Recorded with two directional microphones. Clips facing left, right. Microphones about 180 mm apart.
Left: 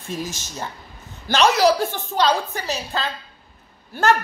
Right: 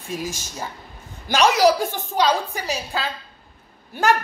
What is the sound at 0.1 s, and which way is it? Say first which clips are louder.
Speech: even; 10° right (ahead or behind).